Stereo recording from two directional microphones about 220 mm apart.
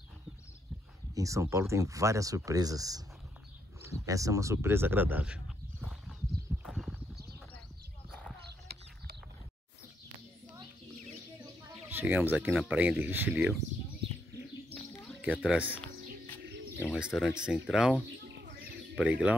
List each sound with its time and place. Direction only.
1.1 s speech: 15° right (ahead or behind)
6.6 s horse: centre (ahead or behind)
11.9 s speech: 10° right (ahead or behind)
15.2 s speech: 5° right (ahead or behind)
17.0 s speech: 5° right (ahead or behind)
18.4 s chirp: 45° right (ahead or behind)
18.9 s speech: 5° right (ahead or behind)